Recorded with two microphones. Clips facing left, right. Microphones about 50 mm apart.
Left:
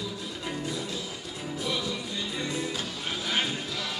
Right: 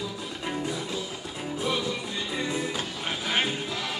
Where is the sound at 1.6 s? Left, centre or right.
Right.